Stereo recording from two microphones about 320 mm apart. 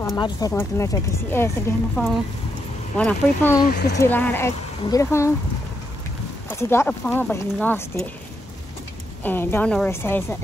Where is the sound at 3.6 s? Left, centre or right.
Left.